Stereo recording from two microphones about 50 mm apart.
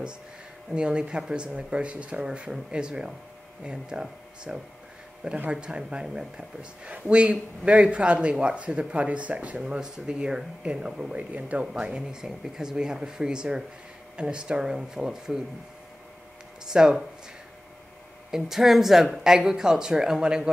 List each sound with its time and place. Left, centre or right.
0.7 s speech: centre
9.6 s speech: centre
11.1 s speech: right
16.6 s speech: centre
18.3 s speech: centre